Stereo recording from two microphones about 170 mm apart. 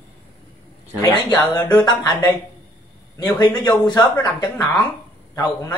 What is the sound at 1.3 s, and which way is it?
Speech, 25° left (ahead or behind).